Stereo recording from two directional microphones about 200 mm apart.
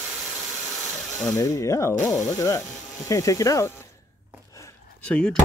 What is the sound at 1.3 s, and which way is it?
A child's voice, 15° left (ahead or behind).